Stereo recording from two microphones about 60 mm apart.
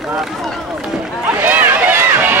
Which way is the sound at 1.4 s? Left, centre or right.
Right.